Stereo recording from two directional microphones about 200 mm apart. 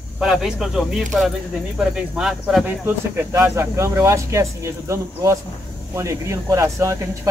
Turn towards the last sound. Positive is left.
turn(degrees=-15)  # may be behind; listen again after turning